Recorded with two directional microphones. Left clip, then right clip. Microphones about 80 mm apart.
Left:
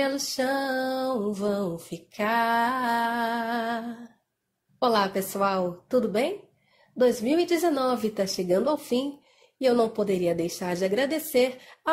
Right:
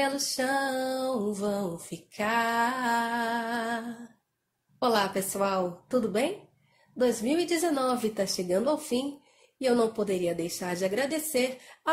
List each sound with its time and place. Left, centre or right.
0.0 s female singing: left
9.6 s a woman's voice: left